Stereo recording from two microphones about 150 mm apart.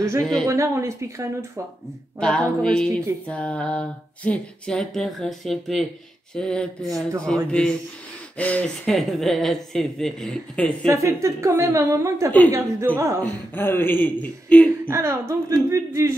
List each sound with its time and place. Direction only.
0.2 s speech: 5° left (ahead or behind)
0.5 s a woman's voice: 20° right (ahead or behind)
2.1 s speech: 5° left (ahead or behind)
3.3 s a sound: 10° left (ahead or behind)
6.3 s speech: 5° left (ahead or behind)
10.9 s a woman's voice: 20° right (ahead or behind)
13.2 s a sound: 15° left (ahead or behind)
14.9 s a woman's voice: 20° right (ahead or behind)